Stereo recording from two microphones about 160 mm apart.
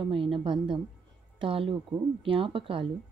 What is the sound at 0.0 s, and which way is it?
Speech, 35° right (ahead or behind).